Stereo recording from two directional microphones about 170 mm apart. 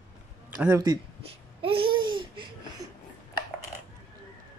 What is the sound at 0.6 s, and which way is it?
Speech, 15° right (ahead or behind).